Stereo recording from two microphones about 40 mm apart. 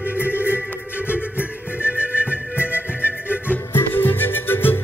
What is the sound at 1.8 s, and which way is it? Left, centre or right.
Music, right.